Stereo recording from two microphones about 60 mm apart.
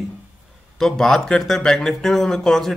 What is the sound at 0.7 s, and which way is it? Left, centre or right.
Speech, centre.